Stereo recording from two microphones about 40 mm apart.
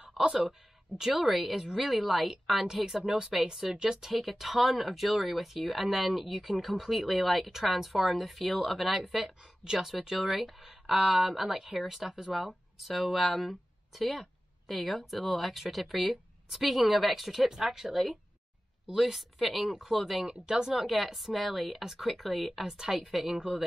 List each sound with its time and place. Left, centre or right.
0.5 s speech: centre
4.1 s speech: centre
20.4 s speech: centre
20.8 s speech: centre